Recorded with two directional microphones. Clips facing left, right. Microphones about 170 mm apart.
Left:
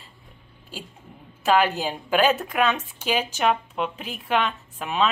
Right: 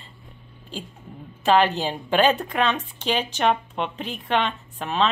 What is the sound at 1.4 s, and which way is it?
Speech, 5° left (ahead or behind).